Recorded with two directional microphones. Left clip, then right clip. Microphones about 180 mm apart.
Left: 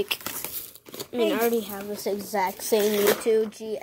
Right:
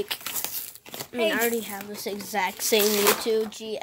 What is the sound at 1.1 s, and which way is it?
A child's voice, 5° left (ahead or behind).